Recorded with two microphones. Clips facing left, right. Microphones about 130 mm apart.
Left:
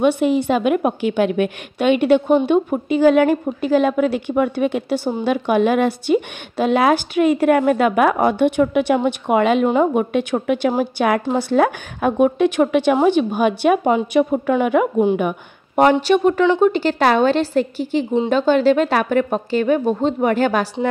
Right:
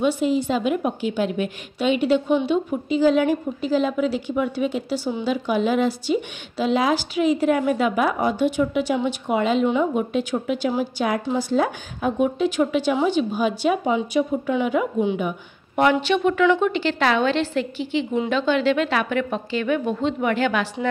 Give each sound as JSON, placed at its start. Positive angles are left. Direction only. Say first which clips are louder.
{"t": 0.0, "sound": "a woman's voice", "louder": "left 4 dB", "side_deg": 60}
{"t": 15.8, "sound": "a woman's voice", "louder": "left 5 dB", "side_deg": 40}